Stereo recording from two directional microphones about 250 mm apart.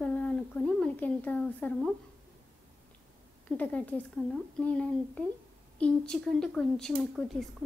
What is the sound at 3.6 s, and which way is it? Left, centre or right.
Speech, centre.